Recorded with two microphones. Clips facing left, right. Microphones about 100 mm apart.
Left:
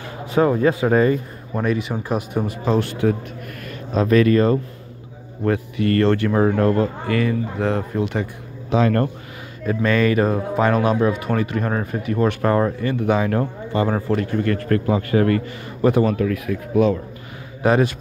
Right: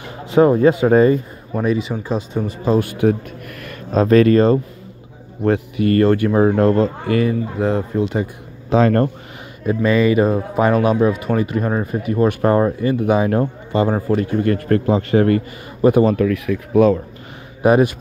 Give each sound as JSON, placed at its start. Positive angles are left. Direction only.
{"t": 0.3, "sound": "speech", "side_deg": -25}
{"t": 1.5, "sound": "speech", "side_deg": 0}
{"t": 2.6, "sound": "speech", "side_deg": -5}
{"t": 3.9, "sound": "speech", "side_deg": -40}
{"t": 5.4, "sound": "speech", "side_deg": -20}
{"t": 7.6, "sound": "speech", "side_deg": -5}
{"t": 8.6, "sound": "speech", "side_deg": -35}
{"t": 9.8, "sound": "speech", "side_deg": -5}
{"t": 12.3, "sound": "speech", "side_deg": -15}
{"t": 16.2, "sound": "speech", "side_deg": -70}
{"t": 17.6, "sound": "speech", "side_deg": -15}